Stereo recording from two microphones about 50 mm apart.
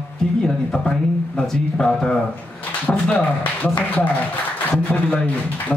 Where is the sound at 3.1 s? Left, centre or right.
Left.